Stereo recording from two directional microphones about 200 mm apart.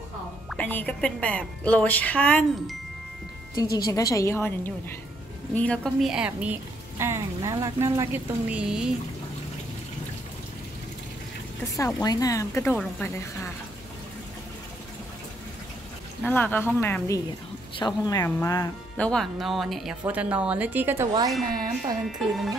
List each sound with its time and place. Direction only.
0.5 s speech: 10° left (ahead or behind)
3.7 s a woman's voice: 15° left (ahead or behind); by 8.9 s 5° right (ahead or behind)
11.7 s speech: 15° left (ahead or behind)
16.3 s speech: 10° left (ahead or behind)
18.9 s a woman's voice: 5° left (ahead or behind); by 21.3 s 15° right (ahead or behind)
22.0 s speech: centre (ahead or behind)